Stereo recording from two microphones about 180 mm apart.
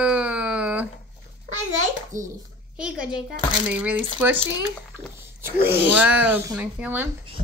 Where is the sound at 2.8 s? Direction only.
5° right (ahead or behind).